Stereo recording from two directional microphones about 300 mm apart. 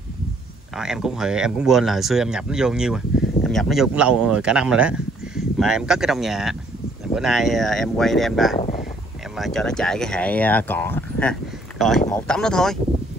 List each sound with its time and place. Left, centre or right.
0.7 s speech: centre
8.5 s speech: left
9.3 s speech: centre